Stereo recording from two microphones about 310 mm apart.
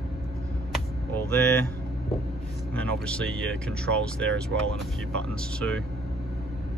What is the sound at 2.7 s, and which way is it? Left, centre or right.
Speech, centre.